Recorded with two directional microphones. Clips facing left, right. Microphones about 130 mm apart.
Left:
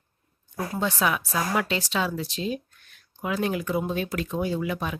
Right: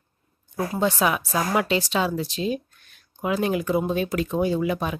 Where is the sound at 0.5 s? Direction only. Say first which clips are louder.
Right 4 dB; 25° right (ahead or behind).